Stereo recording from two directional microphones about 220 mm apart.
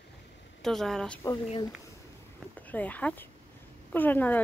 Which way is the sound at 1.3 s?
20° left (ahead or behind).